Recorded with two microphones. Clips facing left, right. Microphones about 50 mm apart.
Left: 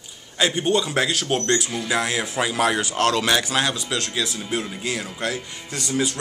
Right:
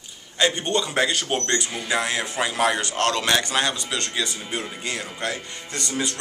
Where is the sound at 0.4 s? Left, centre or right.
Centre.